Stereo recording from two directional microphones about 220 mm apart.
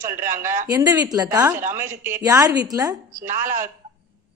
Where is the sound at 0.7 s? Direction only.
10° right (ahead or behind).